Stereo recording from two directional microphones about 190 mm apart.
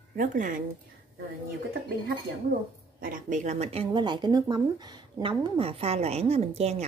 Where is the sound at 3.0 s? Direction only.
45° right (ahead or behind).